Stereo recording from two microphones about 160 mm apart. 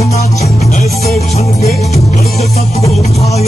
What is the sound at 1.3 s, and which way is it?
Music, 45° left (ahead or behind).